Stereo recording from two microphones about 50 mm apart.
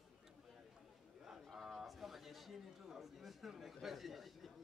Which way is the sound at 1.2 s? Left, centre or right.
Centre.